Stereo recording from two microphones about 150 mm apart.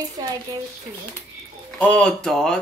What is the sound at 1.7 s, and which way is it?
Speech, 10° left (ahead or behind).